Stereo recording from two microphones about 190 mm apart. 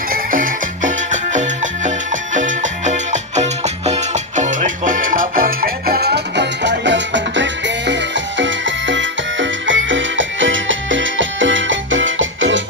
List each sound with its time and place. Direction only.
0.1 s music: 45° right (ahead or behind); by 12.6 s 80° right